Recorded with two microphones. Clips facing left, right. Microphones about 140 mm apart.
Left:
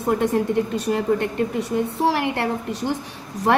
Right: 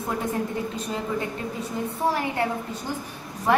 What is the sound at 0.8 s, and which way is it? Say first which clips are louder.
A woman's voice: left 7 dB; 70° left (ahead or behind).